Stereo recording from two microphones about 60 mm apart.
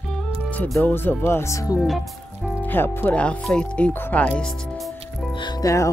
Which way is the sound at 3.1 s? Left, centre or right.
Left.